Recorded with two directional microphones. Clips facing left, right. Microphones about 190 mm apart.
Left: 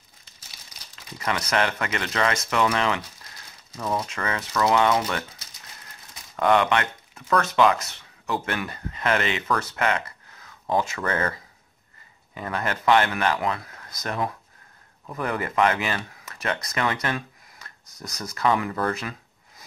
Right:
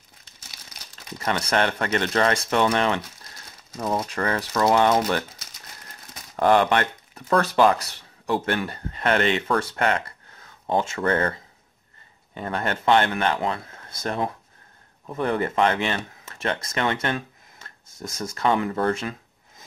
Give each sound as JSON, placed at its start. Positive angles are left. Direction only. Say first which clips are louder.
{"t": 1.2, "sound": "speech", "louder": "right 2 dB", "side_deg": -30}
{"t": 6.3, "sound": "speech", "louder": "right 2 dB", "side_deg": -35}
{"t": 12.4, "sound": "speech", "louder": "right 1 dB", "side_deg": -30}